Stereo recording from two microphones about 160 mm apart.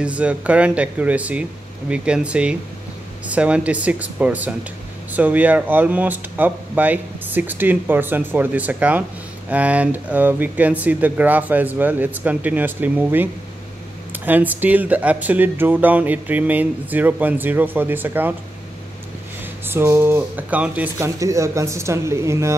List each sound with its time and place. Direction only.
0.0 s speech: 10° right (ahead or behind)
19.6 s speech: 15° right (ahead or behind)